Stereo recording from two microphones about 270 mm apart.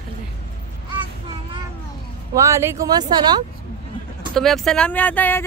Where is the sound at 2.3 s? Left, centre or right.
Centre.